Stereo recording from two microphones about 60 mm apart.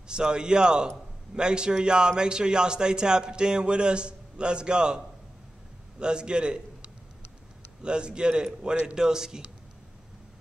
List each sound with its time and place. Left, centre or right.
0.1 s a man's voice: centre